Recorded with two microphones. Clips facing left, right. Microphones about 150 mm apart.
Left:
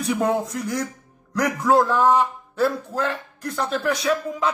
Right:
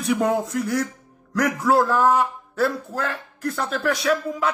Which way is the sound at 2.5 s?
20° left (ahead or behind).